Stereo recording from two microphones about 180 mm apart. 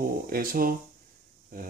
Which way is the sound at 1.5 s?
55° right (ahead or behind).